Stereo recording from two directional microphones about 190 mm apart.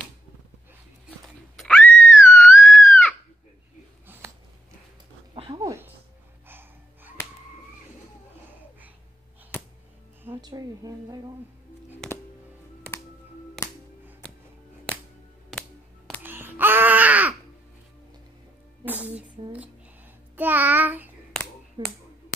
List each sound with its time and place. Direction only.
1.6 s screaming: 5° left (ahead or behind)
4.1 s a sound: 10° right (ahead or behind)
5.3 s a sound: 25° right (ahead or behind)
6.4 s gasp: 10° right (ahead or behind)
10.2 s a woman's voice: 15° right (ahead or behind)
12.0 s music: 5° left (ahead or behind)
15.5 s music: 5° right (ahead or behind)
16.2 s a sound: 10° right (ahead or behind)
18.9 s music: 5° right (ahead or behind)
20.3 s child singing: 10° right (ahead or behind)
21.8 s finger snapping: 25° right (ahead or behind)